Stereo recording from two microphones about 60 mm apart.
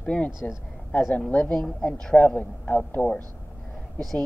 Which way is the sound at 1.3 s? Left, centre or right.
Centre.